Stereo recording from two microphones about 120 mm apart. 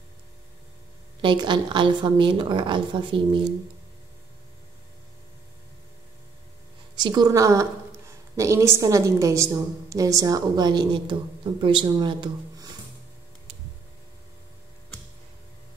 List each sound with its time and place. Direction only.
1.2 s a woman's voice: 40° right (ahead or behind)
7.0 s a woman's voice: 35° right (ahead or behind)